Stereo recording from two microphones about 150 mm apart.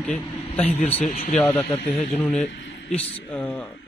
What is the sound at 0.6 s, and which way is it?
Speech, 45° left (ahead or behind).